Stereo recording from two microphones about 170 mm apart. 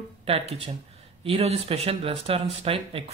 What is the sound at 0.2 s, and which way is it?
Speech, 35° right (ahead or behind).